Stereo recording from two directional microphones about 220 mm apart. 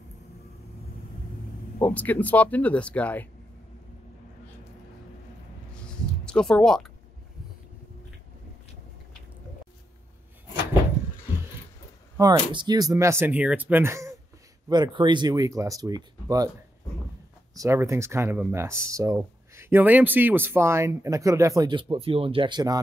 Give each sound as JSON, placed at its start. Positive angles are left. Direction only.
{"t": 1.8, "sound": "speech", "side_deg": 5}
{"t": 6.2, "sound": "speech", "side_deg": 5}
{"t": 12.2, "sound": "speech", "side_deg": -20}
{"t": 17.6, "sound": "speech", "side_deg": -15}